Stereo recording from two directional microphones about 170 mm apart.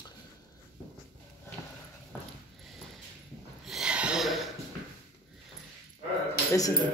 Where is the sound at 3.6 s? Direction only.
5° right (ahead or behind).